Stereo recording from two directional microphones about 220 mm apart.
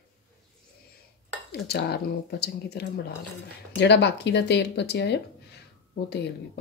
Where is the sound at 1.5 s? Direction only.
50° left (ahead or behind).